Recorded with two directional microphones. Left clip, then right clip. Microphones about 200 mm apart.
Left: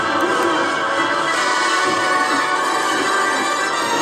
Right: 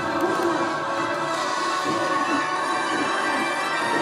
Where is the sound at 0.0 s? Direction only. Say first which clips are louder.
Left 6 dB; 40° left (ahead or behind); by 4.0 s 20° left (ahead or behind).